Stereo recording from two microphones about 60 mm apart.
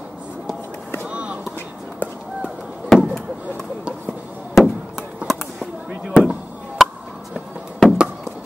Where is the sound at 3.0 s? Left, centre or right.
Centre.